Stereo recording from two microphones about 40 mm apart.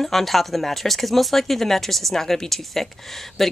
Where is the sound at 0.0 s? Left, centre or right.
Centre.